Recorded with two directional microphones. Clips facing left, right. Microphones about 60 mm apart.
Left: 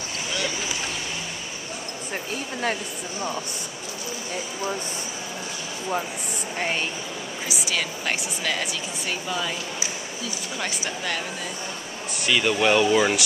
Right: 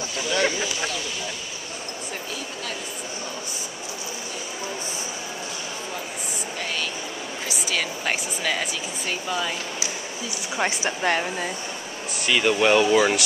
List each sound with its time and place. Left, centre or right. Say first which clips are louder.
6.6 s speech: left 4 dB; left
7.7 s speech: right 2 dB; centre
10.6 s speech: right 7 dB; right
12.3 s speech: right 1 dB; centre